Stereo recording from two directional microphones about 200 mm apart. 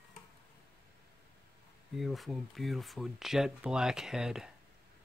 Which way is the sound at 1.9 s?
Centre (ahead or behind).